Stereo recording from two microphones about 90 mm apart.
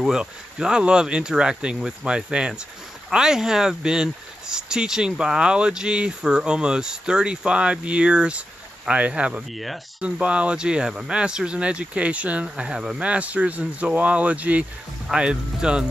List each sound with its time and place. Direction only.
0.0 s speech: 10° right (ahead or behind)